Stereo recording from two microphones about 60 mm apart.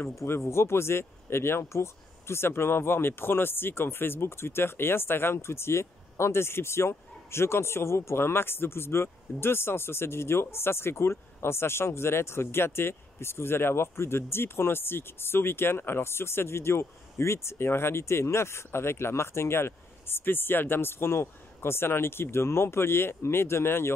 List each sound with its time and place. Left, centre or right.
0.2 s speech: left